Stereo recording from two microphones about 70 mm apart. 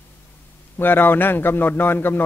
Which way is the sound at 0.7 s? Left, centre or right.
Left.